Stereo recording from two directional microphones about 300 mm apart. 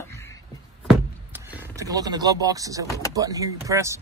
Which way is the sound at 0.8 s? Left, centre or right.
Centre.